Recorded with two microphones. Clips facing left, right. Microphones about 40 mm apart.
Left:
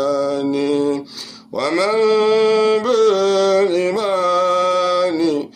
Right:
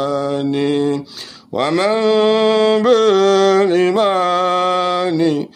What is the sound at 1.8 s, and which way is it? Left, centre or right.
Mantra, right.